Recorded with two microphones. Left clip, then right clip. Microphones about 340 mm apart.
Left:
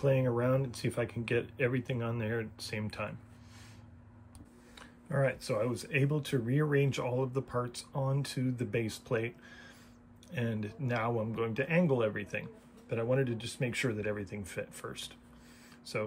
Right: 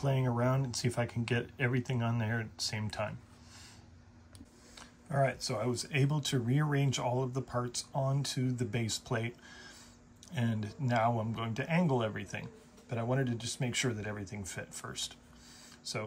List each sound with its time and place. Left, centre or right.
0.0 s speech: centre
4.7 s speech: centre